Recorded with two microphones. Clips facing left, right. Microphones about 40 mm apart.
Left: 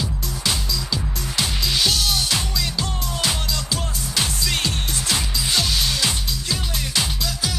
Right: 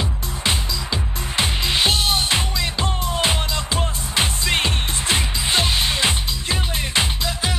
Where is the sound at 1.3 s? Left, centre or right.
Right.